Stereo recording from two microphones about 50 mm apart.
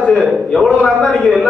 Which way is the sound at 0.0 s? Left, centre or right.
Centre.